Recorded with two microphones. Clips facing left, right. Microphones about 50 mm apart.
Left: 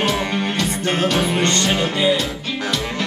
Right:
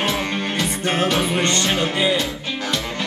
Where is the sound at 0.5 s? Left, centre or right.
Centre.